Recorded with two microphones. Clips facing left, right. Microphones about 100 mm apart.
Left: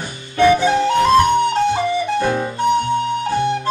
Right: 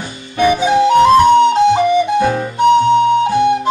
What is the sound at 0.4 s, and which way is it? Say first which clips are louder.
Flute: right 2 dB; 15° right (ahead or behind).